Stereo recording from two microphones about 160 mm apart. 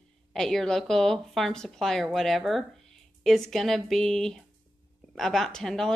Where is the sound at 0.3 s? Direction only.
Centre (ahead or behind).